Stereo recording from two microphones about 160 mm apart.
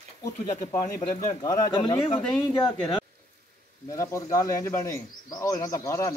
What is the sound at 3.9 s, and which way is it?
Speech, 20° left (ahead or behind).